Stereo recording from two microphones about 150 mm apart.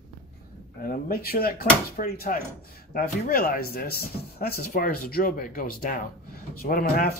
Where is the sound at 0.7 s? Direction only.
75° left (ahead or behind).